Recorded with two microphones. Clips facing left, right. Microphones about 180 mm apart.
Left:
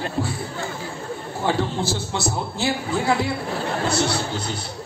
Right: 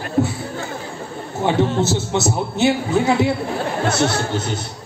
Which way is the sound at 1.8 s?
20° right (ahead or behind).